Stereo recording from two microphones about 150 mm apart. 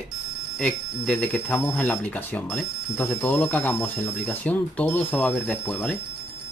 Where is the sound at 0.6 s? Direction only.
5° left (ahead or behind).